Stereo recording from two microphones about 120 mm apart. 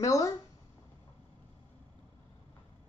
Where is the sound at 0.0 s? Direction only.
25° left (ahead or behind).